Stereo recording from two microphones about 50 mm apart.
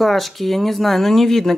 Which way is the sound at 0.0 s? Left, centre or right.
Centre.